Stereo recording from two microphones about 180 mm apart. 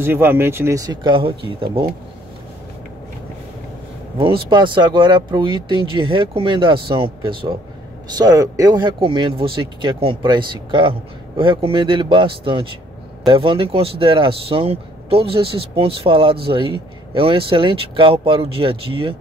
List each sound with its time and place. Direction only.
0.0 s speech: 10° right (ahead or behind); by 1.9 s 30° right (ahead or behind)
4.2 s a man's voice: 25° right (ahead or behind)